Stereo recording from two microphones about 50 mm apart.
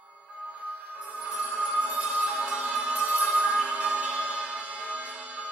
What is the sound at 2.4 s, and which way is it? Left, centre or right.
Music, right.